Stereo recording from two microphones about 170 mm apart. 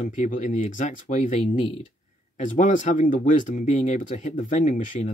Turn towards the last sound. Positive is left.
turn(degrees=45)  # may be behind; listen again after turning